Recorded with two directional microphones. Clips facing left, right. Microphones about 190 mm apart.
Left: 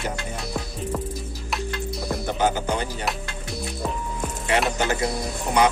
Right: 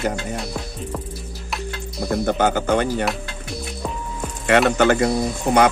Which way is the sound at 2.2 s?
55° right (ahead or behind).